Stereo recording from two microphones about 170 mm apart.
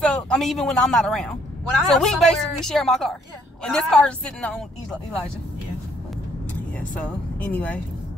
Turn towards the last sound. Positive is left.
turn(degrees=10)  # may be behind; listen again after turning